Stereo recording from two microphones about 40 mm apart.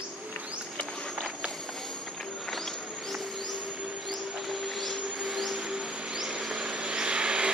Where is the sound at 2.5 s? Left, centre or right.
Centre.